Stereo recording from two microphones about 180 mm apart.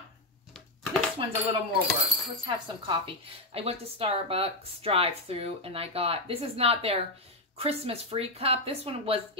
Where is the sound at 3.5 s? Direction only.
35° right (ahead or behind).